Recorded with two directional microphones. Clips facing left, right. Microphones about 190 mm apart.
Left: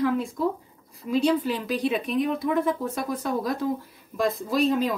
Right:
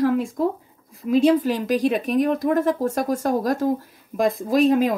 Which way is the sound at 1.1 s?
50° right (ahead or behind).